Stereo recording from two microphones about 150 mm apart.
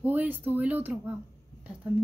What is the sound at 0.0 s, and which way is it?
Speech, 10° right (ahead or behind).